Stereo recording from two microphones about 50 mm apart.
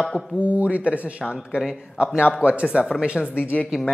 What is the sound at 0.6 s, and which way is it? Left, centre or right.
Speech, right.